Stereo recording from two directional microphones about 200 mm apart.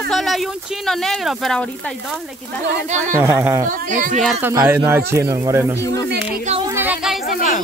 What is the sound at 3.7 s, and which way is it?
Speech, 40° right (ahead or behind).